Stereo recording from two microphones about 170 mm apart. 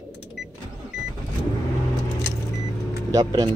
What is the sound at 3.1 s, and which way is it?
Speech, 20° right (ahead or behind).